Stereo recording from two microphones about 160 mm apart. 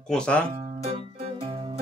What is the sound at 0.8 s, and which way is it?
Music, 40° right (ahead or behind).